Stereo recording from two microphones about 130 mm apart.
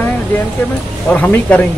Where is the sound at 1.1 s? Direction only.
10° left (ahead or behind).